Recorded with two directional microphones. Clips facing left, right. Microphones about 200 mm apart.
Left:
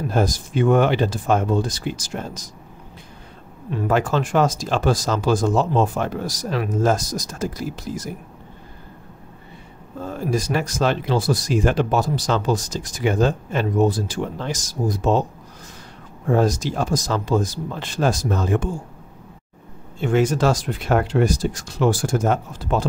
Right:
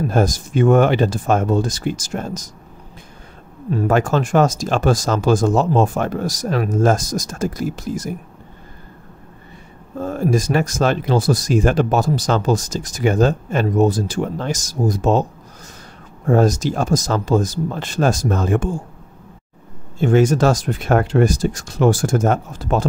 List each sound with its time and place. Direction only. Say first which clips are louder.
0.1 s speech: right 3 dB; 45° right (ahead or behind)
3.7 s speech: right 3 dB; 45° right (ahead or behind)
9.9 s speech: right 5 dB; 45° right (ahead or behind)
16.3 s speech: right 3 dB; 45° right (ahead or behind)
20.0 s speech: right 4 dB; 45° right (ahead or behind)